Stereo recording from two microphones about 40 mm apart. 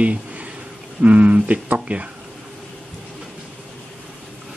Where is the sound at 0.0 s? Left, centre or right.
Right.